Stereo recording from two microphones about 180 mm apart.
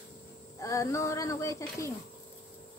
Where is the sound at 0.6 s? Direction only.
15° left (ahead or behind).